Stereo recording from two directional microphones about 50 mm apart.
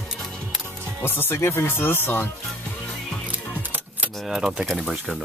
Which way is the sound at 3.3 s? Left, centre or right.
Right.